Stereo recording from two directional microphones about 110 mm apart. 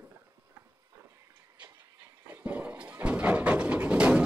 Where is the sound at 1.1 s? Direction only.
30° right (ahead or behind).